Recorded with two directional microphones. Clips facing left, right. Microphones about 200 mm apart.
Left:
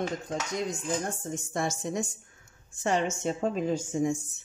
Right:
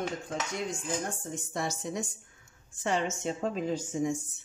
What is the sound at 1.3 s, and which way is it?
A woman's voice, 50° left (ahead or behind).